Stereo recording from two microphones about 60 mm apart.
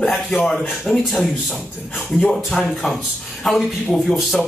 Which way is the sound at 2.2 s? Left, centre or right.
Centre.